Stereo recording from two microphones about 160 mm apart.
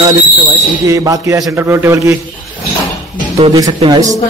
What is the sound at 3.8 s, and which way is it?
Speech, 25° right (ahead or behind).